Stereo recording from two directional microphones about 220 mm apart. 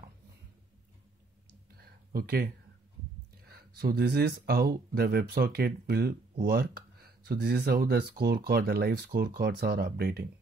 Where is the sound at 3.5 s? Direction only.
45° right (ahead or behind).